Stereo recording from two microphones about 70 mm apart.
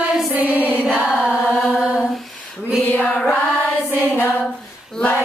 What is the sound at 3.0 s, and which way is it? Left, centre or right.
Music, centre.